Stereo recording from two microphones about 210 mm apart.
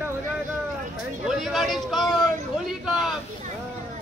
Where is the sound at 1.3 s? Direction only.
Centre (ahead or behind).